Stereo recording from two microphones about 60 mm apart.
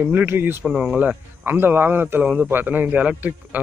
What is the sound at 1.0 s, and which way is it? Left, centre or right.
A man's voice, right.